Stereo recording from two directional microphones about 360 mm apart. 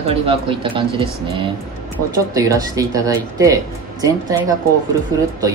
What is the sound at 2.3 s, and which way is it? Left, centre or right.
A woman's voice, centre.